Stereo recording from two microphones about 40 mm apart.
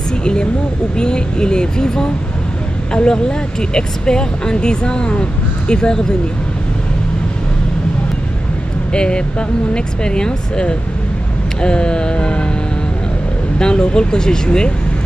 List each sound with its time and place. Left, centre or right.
0.2 s speech: left
8.9 s speech: left
13.6 s speech: left